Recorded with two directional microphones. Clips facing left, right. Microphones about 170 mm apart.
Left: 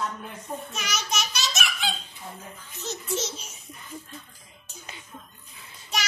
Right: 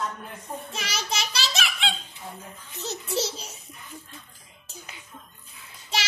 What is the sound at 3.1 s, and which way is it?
Speech, 35° right (ahead or behind).